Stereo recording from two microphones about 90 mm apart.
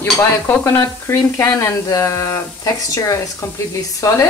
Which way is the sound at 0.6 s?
30° left (ahead or behind).